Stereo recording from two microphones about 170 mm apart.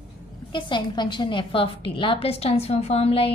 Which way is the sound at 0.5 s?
30° left (ahead or behind).